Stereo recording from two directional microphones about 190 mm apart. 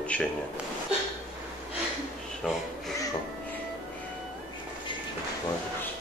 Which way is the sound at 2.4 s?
5° left (ahead or behind).